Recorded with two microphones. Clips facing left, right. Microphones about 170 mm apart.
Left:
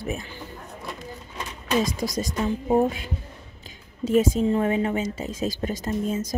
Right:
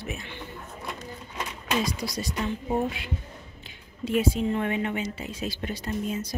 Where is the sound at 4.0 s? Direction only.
45° left (ahead or behind).